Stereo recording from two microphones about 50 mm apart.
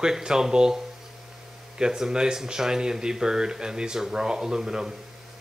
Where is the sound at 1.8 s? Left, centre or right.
Centre.